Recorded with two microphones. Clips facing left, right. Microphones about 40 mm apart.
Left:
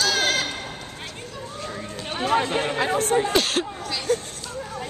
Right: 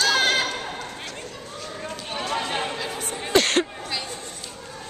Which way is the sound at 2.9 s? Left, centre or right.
Left.